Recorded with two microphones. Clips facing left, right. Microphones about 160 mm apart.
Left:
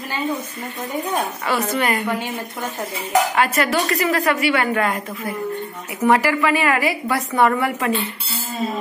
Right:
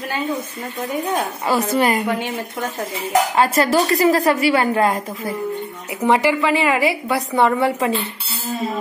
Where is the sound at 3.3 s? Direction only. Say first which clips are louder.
Right 3 dB; 30° right (ahead or behind).